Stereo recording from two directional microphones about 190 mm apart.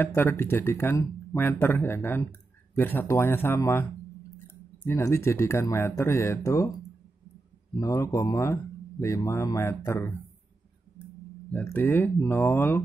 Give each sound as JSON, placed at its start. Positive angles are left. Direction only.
{"t": 0.0, "sound": "speech", "side_deg": 10}
{"t": 4.8, "sound": "speech", "side_deg": 15}
{"t": 7.8, "sound": "speech", "side_deg": 15}
{"t": 11.5, "sound": "speech", "side_deg": 10}